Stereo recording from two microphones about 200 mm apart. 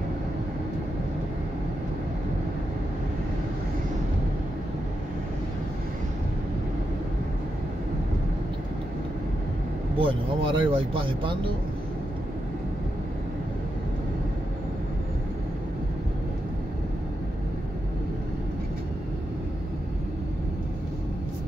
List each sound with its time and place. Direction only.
9.9 s speech: 25° right (ahead or behind)